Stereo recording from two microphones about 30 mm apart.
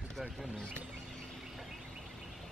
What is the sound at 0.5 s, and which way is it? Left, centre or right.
Chirp, left.